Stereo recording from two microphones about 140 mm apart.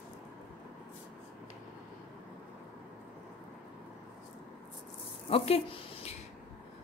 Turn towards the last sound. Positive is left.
turn(degrees=45)  # may be behind; listen again after turning